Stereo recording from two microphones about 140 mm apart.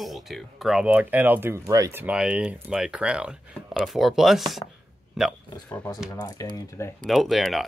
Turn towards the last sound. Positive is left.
turn(degrees=0)  # may be behind; listen again after turning